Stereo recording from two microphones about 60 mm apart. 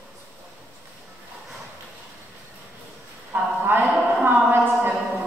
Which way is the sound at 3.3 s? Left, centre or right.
Right.